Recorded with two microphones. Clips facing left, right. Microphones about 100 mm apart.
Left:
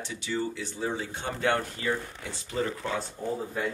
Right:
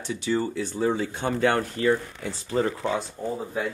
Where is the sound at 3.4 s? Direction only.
10° right (ahead or behind).